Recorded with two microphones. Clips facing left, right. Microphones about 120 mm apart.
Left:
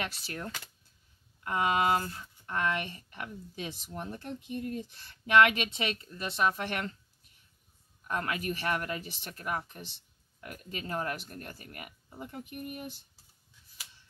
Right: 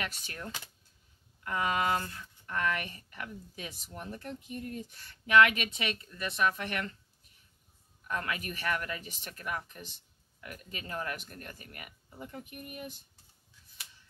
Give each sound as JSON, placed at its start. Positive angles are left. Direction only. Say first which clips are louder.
{"t": 0.2, "sound": "speech", "louder": "left 3 dB", "side_deg": 35}
{"t": 8.1, "sound": "speech", "louder": "left 3 dB", "side_deg": 35}